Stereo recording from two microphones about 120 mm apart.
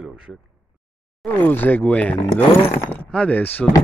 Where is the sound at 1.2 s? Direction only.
15° left (ahead or behind).